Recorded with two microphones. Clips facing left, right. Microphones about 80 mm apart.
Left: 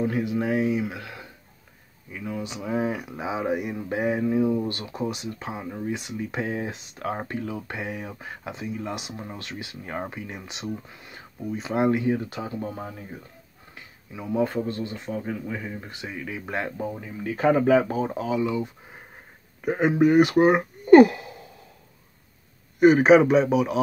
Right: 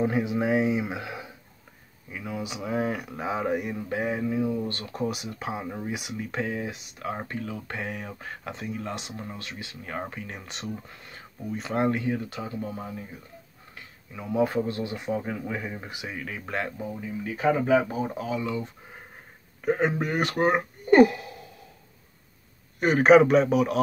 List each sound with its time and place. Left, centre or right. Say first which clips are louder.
0.0 s speech: even; centre
2.1 s speech: left 1 dB; centre
3.9 s speech: left 4 dB; left
4.9 s speech: left 1 dB; centre
6.4 s speech: left 2 dB; left
7.6 s speech: left 1 dB; centre
8.9 s speech: left 1 dB; centre
11.8 s speech: left 4 dB; centre; by 12.9 s left
14.1 s speech: even; centre
16.4 s speech: left 1 dB; left
17.7 s speech: left 2 dB; left; by 21.1 s centre
21.1 s sigh: even; left
22.8 s speech: left 2 dB; centre